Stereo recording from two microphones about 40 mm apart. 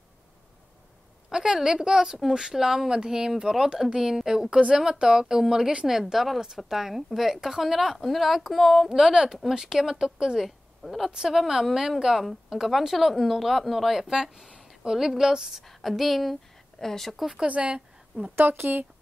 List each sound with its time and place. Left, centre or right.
1.3 s speech: centre
8.9 s speech: centre
10.8 s a woman's voice: centre
11.2 s speech: centre
15.6 s speech: centre
17.5 s a woman's voice: right
18.3 s speech: right